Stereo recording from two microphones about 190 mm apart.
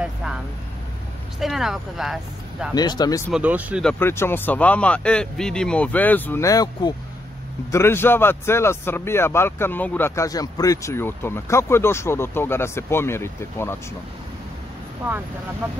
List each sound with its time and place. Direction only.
0.0 s vehicle: 5° right (ahead or behind)
1.4 s speech: centre (ahead or behind)
2.7 s speech: 20° left (ahead or behind)
3.3 s speech: 5° right (ahead or behind)
3.8 s speech: 10° left (ahead or behind)
15.6 s speech: 10° right (ahead or behind)